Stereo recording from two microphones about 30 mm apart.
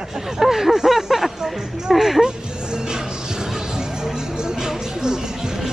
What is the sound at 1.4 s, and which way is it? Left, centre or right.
Speech, centre.